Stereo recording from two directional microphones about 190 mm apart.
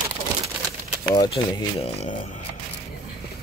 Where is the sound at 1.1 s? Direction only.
25° left (ahead or behind).